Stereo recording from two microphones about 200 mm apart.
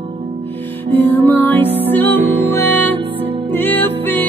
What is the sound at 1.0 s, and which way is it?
Music, 10° left (ahead or behind).